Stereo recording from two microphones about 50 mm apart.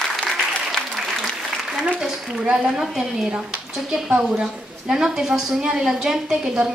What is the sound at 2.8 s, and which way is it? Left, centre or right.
A woman's voice, centre.